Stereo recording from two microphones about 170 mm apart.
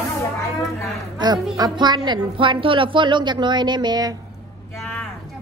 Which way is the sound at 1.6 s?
25° right (ahead or behind).